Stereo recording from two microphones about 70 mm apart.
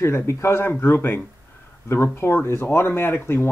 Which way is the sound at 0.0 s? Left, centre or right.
Left.